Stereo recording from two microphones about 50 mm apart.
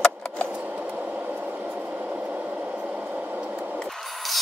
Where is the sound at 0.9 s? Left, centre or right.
Centre.